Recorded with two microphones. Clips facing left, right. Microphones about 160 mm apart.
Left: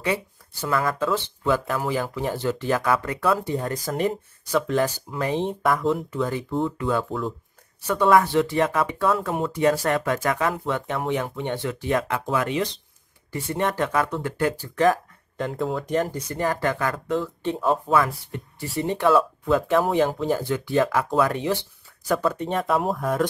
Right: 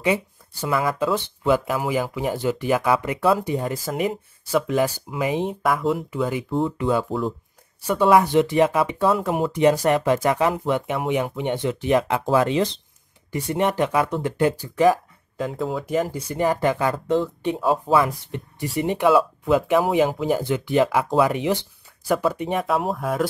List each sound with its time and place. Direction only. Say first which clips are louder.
0.0 s speech: right 4 dB; 15° right (ahead or behind); by 12.6 s 30° right (ahead or behind)
13.3 s speech: right 3 dB; 15° right (ahead or behind)
15.3 s speech: right 1 dB; centre (ahead or behind)